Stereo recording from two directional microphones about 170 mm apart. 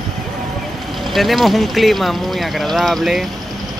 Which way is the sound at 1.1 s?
Centre (ahead or behind).